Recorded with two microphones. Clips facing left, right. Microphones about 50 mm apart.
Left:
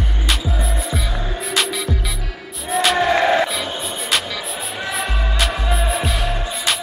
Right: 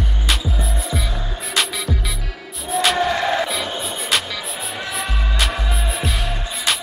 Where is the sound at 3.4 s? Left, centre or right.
Centre.